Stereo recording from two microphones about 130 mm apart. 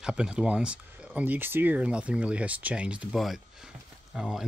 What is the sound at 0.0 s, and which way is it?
Speech, 5° right (ahead or behind).